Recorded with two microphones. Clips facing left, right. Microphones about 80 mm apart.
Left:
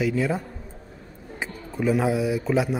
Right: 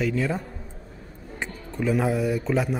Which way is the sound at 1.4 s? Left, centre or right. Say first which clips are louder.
Left 2 dB; centre.